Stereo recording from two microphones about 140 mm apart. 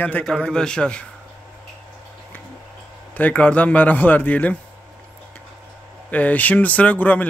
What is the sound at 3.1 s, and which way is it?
A man's voice, 10° left (ahead or behind).